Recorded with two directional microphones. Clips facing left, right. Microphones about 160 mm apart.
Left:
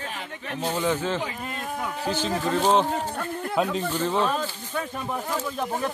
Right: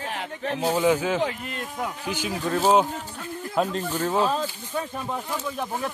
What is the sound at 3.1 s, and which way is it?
Speech, 60° left (ahead or behind).